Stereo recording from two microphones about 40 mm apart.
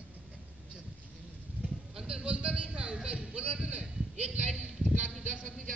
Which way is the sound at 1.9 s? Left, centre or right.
Right.